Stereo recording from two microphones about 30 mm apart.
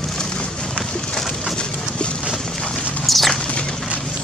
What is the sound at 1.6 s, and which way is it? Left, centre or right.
Boat, left.